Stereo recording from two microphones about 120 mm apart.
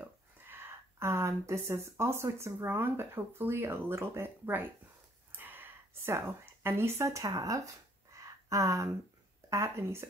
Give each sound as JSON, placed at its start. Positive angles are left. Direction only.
{"t": 0.5, "sound": "speech", "side_deg": -20}
{"t": 5.3, "sound": "a sound", "side_deg": -15}
{"t": 9.5, "sound": "speech", "side_deg": -25}